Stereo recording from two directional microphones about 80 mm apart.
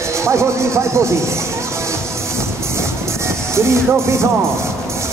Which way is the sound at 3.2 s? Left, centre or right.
Right.